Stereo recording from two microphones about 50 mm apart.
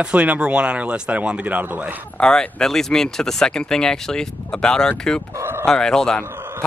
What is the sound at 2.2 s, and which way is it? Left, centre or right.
Speech, centre.